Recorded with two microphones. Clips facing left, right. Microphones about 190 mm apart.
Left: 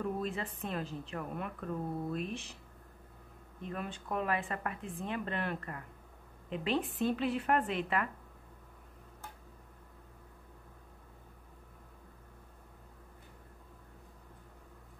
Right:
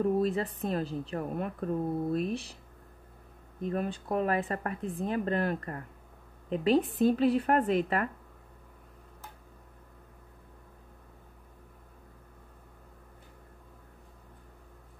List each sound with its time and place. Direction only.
0.0 s a woman's voice: 40° right (ahead or behind)
3.6 s a woman's voice: 40° right (ahead or behind)